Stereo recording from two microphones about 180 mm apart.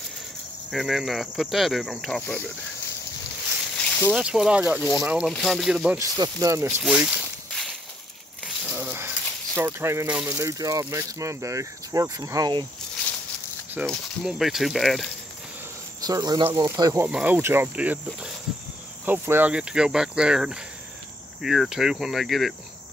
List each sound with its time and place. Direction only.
0.7 s speech: centre (ahead or behind)
3.7 s a sound: 5° left (ahead or behind)
4.2 s speech: 5° right (ahead or behind)
5.9 s speech: 20° right (ahead or behind)
6.8 s walk: 5° right (ahead or behind)
8.6 s a sound: 10° right (ahead or behind)
9.6 s speech: 15° right (ahead or behind)
13.8 s speech: centre (ahead or behind)
16.0 s speech: 20° right (ahead or behind)
17.1 s speech: 10° right (ahead or behind)